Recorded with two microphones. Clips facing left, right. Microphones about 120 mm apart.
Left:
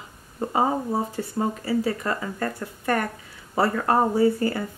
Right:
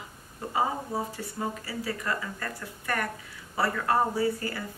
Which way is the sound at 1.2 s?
40° left (ahead or behind).